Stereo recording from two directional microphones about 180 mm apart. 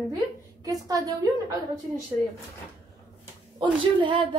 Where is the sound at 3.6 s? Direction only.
25° right (ahead or behind).